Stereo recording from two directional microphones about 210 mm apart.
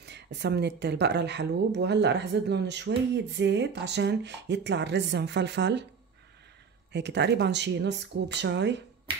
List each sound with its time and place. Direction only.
0.0 s speech: 55° right (ahead or behind)
6.9 s speech: 55° right (ahead or behind)